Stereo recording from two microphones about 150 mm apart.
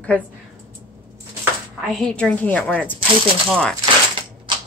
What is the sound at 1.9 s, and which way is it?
A woman's voice, 5° left (ahead or behind).